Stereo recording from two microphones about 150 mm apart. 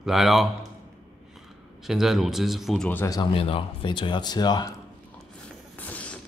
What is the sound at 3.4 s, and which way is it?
Speech, 35° left (ahead or behind).